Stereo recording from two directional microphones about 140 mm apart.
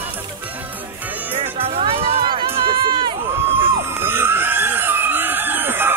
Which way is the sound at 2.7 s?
35° right (ahead or behind).